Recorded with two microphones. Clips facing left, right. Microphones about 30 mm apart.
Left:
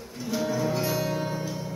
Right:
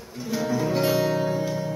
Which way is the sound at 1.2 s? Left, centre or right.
Centre.